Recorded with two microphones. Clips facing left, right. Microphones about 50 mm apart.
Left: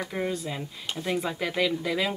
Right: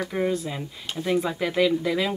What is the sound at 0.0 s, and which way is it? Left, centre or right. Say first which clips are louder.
Speech: right 5 dB; centre.